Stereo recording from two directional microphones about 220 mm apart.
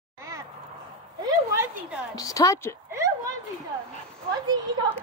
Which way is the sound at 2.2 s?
15° left (ahead or behind).